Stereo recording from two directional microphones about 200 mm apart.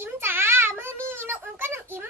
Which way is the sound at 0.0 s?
10° right (ahead or behind).